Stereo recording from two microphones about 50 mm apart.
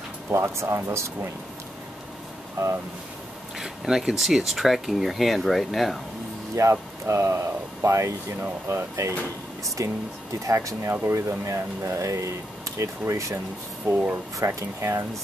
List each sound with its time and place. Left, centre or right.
0.3 s speech: right
2.6 s speech: right
3.5 s speech: centre
6.5 s speech: right
9.8 s speech: right
11.1 s speech: right
13.8 s speech: right
14.4 s speech: right